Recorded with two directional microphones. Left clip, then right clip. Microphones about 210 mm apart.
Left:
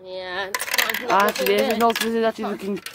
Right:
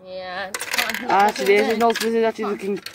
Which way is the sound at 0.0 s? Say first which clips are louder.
Left 1 dB; 45° left (ahead or behind).